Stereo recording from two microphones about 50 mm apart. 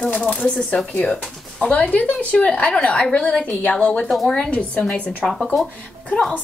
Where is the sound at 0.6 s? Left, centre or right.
Centre.